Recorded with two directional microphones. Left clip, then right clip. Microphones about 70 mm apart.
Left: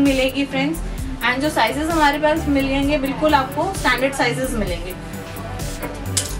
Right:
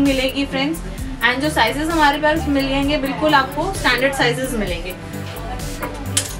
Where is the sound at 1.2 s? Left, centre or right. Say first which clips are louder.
Right 2 dB; centre.